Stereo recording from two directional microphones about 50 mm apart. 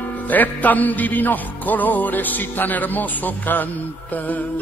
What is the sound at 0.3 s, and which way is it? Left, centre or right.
Music, left.